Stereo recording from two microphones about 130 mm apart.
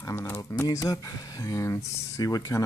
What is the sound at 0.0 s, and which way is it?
Speech, 20° left (ahead or behind).